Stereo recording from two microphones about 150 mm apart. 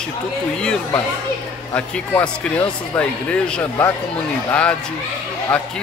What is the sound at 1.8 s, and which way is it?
Speech, 5° left (ahead or behind).